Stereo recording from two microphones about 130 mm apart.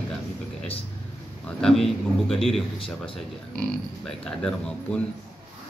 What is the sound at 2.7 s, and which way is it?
Speech, 45° left (ahead or behind).